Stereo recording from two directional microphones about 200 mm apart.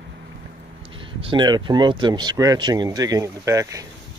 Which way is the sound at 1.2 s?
25° right (ahead or behind).